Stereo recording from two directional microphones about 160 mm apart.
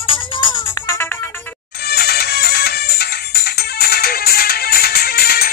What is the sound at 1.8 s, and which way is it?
Music, 80° left.